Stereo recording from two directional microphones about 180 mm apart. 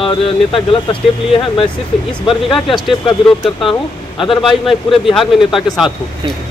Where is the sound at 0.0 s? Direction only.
30° left (ahead or behind).